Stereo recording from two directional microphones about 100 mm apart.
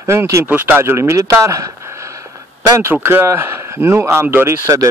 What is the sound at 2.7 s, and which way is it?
Speech, 25° right (ahead or behind).